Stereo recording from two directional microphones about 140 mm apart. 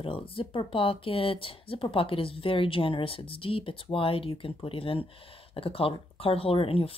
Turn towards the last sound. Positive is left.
turn(degrees=40)  # may be behind; listen again after turning